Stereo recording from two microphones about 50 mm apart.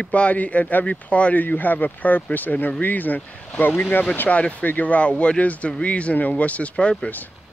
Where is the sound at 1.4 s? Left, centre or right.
Left.